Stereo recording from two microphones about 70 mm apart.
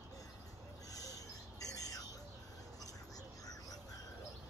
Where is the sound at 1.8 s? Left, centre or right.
Left.